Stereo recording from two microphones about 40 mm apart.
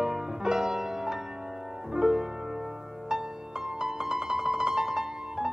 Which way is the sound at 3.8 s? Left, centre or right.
Centre.